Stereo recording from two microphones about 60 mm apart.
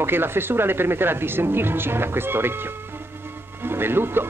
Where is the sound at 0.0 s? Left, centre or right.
Right.